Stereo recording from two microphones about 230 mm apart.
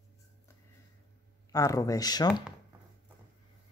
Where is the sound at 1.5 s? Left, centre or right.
Centre.